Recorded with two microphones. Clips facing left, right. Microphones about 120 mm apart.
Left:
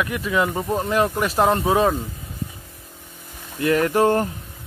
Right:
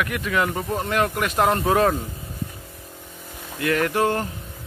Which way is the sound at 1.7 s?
10° left (ahead or behind).